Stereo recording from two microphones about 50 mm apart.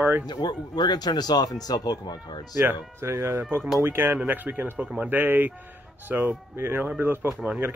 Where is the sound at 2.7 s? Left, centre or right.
Right.